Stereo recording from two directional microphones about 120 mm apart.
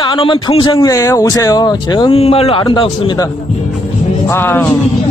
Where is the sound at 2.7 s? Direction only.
45° left (ahead or behind).